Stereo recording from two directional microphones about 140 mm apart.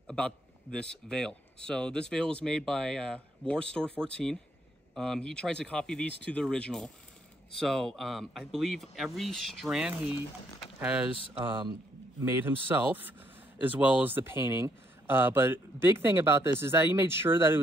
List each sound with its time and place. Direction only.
0.0 s speech: 5° left (ahead or behind)
11.4 s speech: 35° right (ahead or behind)
12.3 s speech: 15° right (ahead or behind)